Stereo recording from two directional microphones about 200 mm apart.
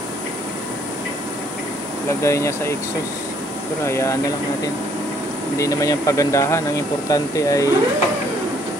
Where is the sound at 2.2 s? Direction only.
15° left (ahead or behind).